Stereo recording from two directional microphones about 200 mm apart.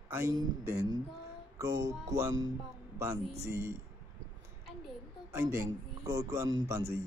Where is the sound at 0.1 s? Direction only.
15° right (ahead or behind).